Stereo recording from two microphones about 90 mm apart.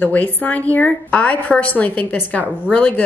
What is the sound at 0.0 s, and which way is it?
A woman's voice, 20° left (ahead or behind).